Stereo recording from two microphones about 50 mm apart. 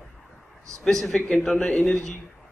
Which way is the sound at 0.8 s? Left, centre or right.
Centre.